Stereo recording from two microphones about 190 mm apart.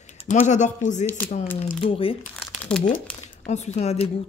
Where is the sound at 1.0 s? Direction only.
10° left (ahead or behind).